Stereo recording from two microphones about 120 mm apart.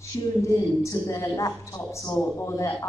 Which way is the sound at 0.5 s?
25° left (ahead or behind).